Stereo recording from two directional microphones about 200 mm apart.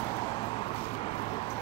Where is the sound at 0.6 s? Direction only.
30° left (ahead or behind).